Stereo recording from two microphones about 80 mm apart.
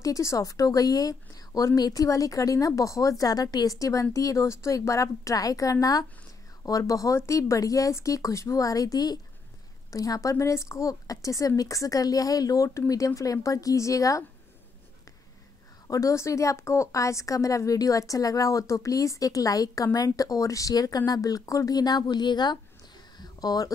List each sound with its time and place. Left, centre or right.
0.0 s a woman's voice: left
15.9 s a woman's voice: left
23.1 s a sound: left